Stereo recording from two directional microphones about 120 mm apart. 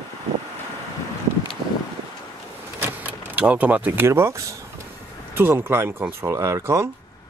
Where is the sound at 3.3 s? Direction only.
10° right (ahead or behind).